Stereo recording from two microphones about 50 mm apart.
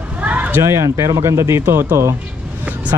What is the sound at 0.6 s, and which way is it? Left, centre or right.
Speech, right.